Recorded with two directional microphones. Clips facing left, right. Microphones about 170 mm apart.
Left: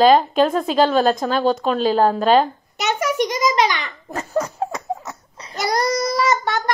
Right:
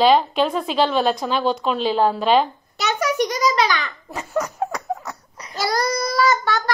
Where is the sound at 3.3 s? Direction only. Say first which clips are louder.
Left 1 dB; 20° left (ahead or behind).